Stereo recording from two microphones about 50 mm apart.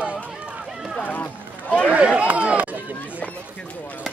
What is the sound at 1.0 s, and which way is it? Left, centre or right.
Run, left.